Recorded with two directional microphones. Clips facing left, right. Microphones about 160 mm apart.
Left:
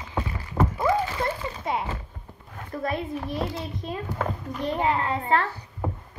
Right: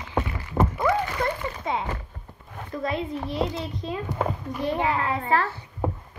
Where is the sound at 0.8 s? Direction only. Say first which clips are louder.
Even; 25° left (ahead or behind).